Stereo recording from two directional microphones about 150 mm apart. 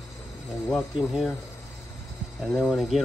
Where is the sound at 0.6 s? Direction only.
Centre (ahead or behind).